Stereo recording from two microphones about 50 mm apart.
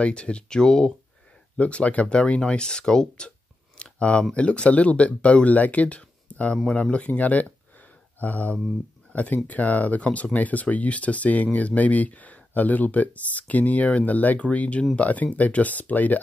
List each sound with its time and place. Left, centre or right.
0.0 s speech: left
1.6 s speech: left
6.5 s speech: centre; by 16.2 s left